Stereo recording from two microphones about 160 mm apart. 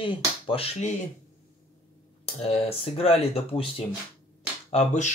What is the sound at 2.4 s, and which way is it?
Speech, 35° left (ahead or behind).